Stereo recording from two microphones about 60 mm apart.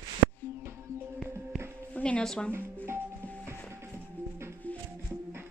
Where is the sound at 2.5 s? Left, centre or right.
Right.